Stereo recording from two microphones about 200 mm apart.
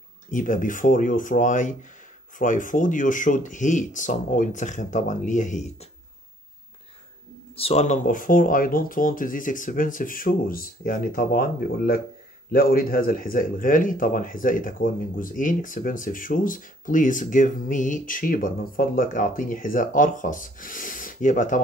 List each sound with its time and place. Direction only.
0.3 s speech: 40° left (ahead or behind)
7.5 s speech: 30° left (ahead or behind)